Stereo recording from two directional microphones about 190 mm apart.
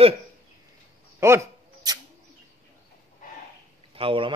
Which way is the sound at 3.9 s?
30° right (ahead or behind).